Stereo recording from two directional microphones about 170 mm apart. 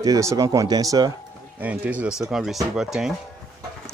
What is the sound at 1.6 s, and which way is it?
Speech, 10° right (ahead or behind).